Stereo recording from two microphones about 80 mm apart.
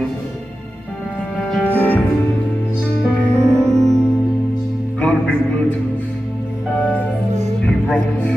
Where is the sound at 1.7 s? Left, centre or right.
Left.